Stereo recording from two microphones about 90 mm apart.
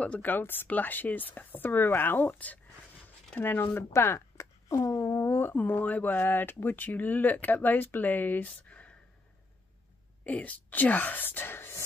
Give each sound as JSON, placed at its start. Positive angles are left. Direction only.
{"t": 0.0, "sound": "speech", "side_deg": 15}
{"t": 10.2, "sound": "speech", "side_deg": 15}